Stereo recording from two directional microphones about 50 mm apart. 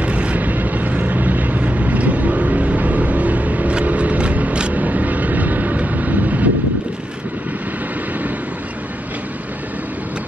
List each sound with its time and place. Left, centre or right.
0.0 s vehicle: right